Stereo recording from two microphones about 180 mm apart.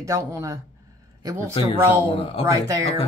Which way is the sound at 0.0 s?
15° right (ahead or behind).